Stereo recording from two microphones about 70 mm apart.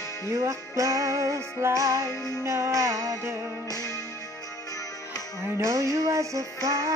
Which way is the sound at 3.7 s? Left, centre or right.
Left.